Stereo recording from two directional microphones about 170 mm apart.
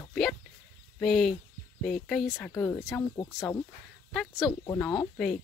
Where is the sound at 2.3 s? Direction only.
10° left (ahead or behind).